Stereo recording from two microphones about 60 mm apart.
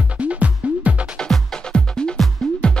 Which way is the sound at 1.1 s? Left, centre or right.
Centre.